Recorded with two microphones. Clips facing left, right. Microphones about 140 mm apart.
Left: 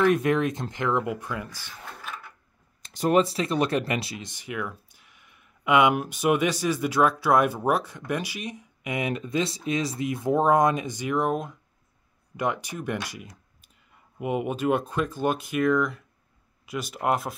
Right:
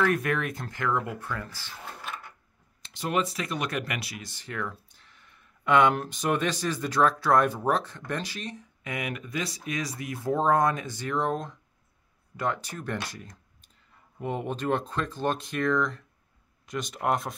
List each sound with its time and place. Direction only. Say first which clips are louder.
0.0 s speech: left 5 dB; 20° left (ahead or behind)
2.8 s speech: left 7 dB; 40° left (ahead or behind); by 17.4 s 5° left (ahead or behind)